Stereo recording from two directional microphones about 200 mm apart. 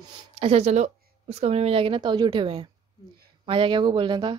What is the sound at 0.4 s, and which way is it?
A woman's voice, 30° right (ahead or behind).